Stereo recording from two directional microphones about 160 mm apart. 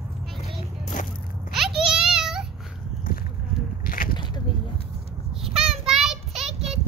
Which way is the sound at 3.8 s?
60° left (ahead or behind).